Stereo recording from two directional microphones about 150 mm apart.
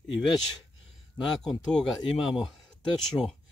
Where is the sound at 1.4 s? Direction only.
Centre (ahead or behind).